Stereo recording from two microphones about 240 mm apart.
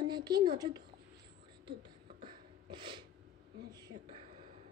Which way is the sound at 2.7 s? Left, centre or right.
Centre.